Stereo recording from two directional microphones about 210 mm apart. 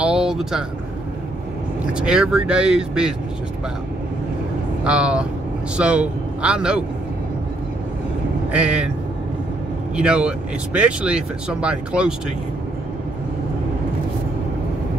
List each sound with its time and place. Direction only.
0.0 s vehicle: 5° right (ahead or behind)
2.0 s speech: 5° right (ahead or behind)
4.8 s a man's voice: 5° right (ahead or behind)
8.5 s speech: 5° right (ahead or behind)
9.9 s speech: 5° right (ahead or behind)